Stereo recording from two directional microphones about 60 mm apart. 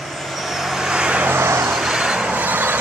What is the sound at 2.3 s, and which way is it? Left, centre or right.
Vehicle, right.